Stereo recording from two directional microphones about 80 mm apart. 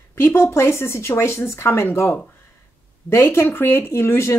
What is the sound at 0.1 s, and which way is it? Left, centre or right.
Speech, left.